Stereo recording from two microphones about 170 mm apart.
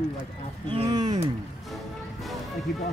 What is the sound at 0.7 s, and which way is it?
Speech, 25° right (ahead or behind).